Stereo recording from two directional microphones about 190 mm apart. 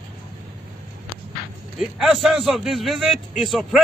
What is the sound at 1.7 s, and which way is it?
A man's voice, centre (ahead or behind).